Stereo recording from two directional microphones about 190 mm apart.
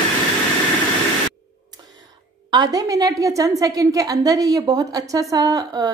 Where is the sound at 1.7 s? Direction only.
20° right (ahead or behind).